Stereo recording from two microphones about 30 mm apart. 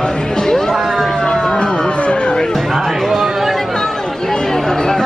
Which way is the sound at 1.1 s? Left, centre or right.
Left.